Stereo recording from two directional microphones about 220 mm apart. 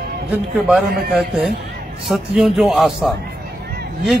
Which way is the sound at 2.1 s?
Centre (ahead or behind).